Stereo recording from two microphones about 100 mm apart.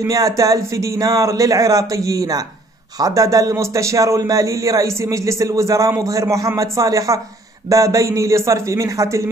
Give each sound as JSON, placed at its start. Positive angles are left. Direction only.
{"t": 0.0, "sound": "a man's voice", "side_deg": -35}